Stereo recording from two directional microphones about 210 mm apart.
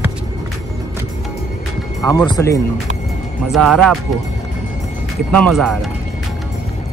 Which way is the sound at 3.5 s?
Centre (ahead or behind).